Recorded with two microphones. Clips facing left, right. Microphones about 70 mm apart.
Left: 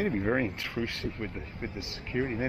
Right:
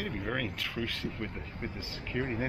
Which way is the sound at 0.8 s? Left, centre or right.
Centre.